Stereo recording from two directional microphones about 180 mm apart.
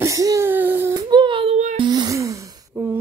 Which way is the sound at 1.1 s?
25° right (ahead or behind).